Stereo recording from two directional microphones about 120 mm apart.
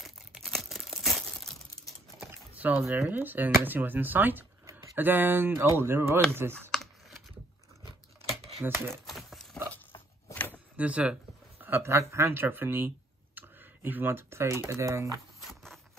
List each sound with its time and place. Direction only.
0.0 s crumpling: centre (ahead or behind)
2.1 s speech: 15° right (ahead or behind)
8.6 s speech: 15° right (ahead or behind)
8.9 s a sound: centre (ahead or behind)
10.5 s a sound: 10° right (ahead or behind)
14.7 s speech: 25° right (ahead or behind)